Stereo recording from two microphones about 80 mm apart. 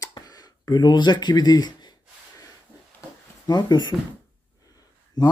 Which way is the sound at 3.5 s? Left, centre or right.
Left.